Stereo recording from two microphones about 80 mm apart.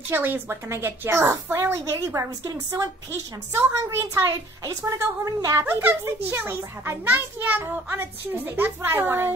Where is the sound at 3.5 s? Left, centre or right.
Right.